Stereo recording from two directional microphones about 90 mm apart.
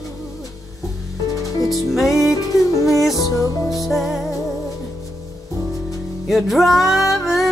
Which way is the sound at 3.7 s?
Centre (ahead or behind).